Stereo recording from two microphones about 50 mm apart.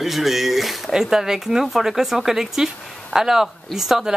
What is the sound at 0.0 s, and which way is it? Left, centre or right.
Speech, centre.